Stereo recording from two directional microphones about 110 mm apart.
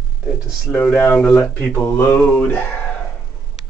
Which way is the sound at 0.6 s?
20° left (ahead or behind).